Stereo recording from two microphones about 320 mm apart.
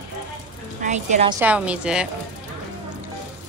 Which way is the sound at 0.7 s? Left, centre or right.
Right.